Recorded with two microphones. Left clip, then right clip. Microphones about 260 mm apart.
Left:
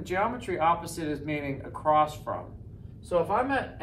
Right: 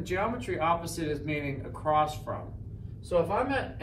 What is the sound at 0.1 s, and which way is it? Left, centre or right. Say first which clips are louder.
Speech: left 2 dB; centre.